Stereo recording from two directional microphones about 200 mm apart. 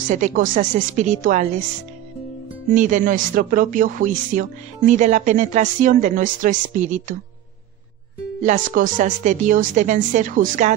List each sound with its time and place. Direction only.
0.1 s speech: 40° right (ahead or behind)
2.7 s speech: 40° right (ahead or behind)
8.5 s speech: 40° right (ahead or behind)